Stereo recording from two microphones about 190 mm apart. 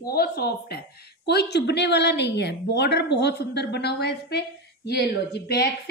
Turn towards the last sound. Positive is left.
turn(degrees=60)  # may be behind; listen again after turning